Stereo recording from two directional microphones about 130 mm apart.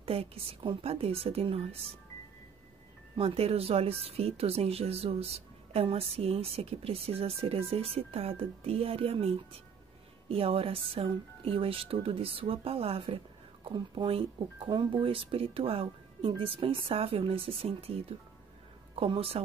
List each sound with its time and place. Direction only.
0.0 s speech: 50° right (ahead or behind)
3.2 s speech: 50° right (ahead or behind)